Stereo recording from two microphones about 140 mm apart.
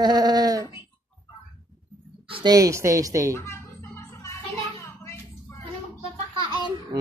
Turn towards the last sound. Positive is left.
turn(degrees=-35)  # may be behind; listen again after turning